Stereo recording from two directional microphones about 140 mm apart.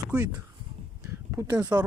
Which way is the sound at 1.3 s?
20° right (ahead or behind).